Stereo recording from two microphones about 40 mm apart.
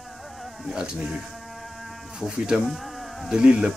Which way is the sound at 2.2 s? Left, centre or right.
Centre.